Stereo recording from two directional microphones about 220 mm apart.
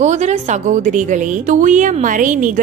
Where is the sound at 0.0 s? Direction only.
30° right (ahead or behind).